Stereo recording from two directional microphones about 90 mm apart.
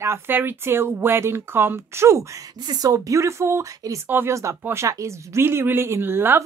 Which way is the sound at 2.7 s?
45° right (ahead or behind).